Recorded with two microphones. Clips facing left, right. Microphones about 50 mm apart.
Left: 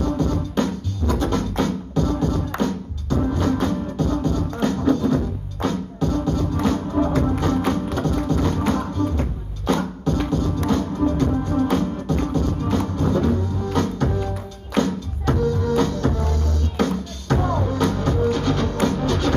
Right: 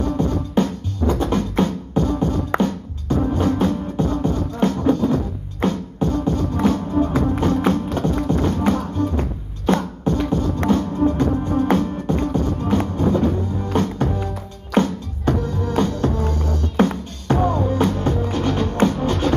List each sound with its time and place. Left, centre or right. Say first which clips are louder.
0.0 s music: right 1 dB; right
9.8 s beatboxing: right 1 dB; centre
10.7 s music: right 3 dB; right